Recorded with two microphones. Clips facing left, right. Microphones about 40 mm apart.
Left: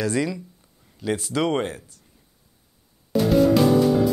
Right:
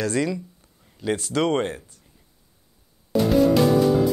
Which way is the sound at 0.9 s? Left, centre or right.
Centre.